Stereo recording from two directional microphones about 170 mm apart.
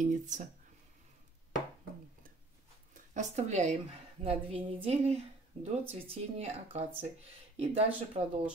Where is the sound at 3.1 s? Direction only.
45° right (ahead or behind).